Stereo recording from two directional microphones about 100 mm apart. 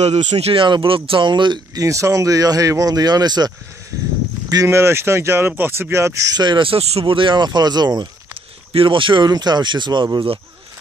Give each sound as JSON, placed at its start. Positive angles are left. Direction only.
{"t": 0.0, "sound": "speech", "side_deg": -90}
{"t": 0.7, "sound": "speech", "side_deg": -55}
{"t": 1.8, "sound": "speech", "side_deg": -35}
{"t": 4.6, "sound": "speech", "side_deg": -25}
{"t": 6.3, "sound": "speech", "side_deg": -50}
{"t": 8.7, "sound": "speech", "side_deg": -55}
{"t": 9.3, "sound": "speech", "side_deg": -45}